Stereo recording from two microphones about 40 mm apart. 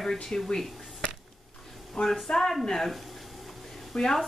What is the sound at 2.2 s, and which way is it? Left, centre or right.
Speech, centre.